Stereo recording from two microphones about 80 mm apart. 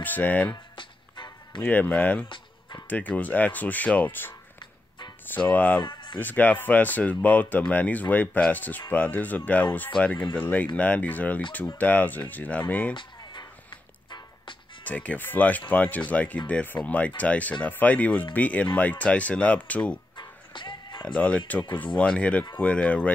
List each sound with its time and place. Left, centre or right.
0.0 s speech: left
0.7 s music: left
1.6 s speech: left
4.6 s music: left
5.3 s speech: left
5.8 s speech: left
6.1 s speech: left
12.9 s music: left
14.9 s speech: centre
20.2 s music: left
21.0 s speech: centre